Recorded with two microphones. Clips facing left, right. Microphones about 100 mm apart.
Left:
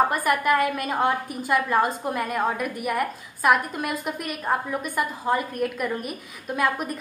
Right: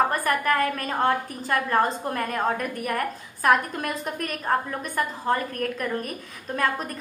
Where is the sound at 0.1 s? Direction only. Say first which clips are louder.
Left 2 dB; 15° left (ahead or behind).